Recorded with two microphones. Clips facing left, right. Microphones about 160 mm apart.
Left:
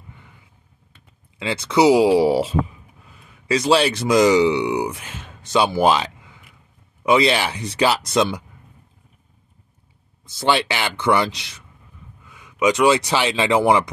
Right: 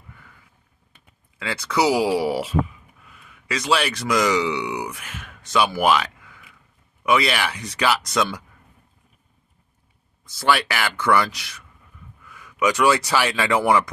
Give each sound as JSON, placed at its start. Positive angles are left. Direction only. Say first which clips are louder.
{"t": 0.1, "sound": "vehicle", "louder": "right 1 dB", "side_deg": 20}
{"t": 1.4, "sound": "speech", "louder": "left 5 dB", "side_deg": 25}
{"t": 10.2, "sound": "speech", "louder": "left 1 dB", "side_deg": 25}